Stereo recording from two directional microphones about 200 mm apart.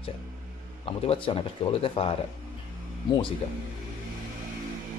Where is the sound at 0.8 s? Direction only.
30° left (ahead or behind).